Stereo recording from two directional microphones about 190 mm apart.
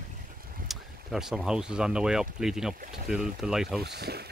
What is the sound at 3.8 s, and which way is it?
Speech, 55° right (ahead or behind).